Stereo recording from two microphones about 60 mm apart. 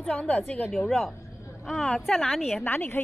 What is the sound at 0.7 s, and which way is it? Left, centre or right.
A woman's voice, centre.